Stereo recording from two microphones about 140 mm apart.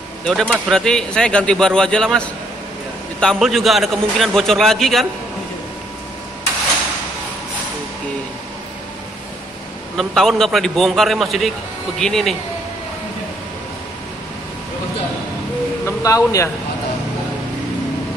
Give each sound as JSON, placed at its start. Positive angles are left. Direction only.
{"t": 0.3, "sound": "speech", "side_deg": 0}
{"t": 9.9, "sound": "speech", "side_deg": 5}
{"t": 15.8, "sound": "speech", "side_deg": 25}